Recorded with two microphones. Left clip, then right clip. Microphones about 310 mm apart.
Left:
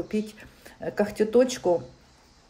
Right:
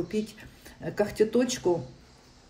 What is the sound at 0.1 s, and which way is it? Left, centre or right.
Speech, centre.